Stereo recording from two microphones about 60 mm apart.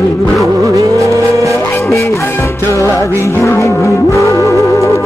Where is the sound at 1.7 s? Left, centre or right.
Left.